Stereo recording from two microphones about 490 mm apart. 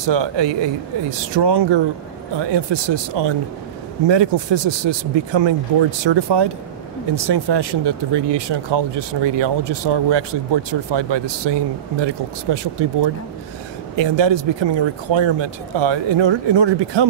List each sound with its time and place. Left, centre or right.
0.0 s speech: right